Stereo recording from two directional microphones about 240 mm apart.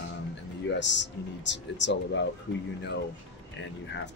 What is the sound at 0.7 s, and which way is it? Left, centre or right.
Speech, left.